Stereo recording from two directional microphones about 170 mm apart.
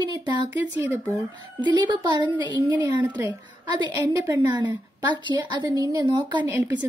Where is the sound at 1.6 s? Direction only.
25° right (ahead or behind).